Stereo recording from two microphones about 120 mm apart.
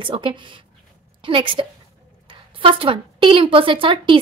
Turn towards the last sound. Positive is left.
turn(degrees=-45)  # may be behind; listen again after turning